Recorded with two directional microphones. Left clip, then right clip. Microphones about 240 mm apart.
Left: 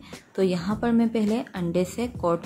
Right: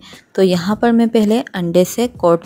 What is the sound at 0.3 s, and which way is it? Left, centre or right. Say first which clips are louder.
A woman's voice: right 10 dB; right.